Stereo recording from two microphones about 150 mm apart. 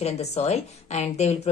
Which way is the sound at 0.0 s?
45° left (ahead or behind).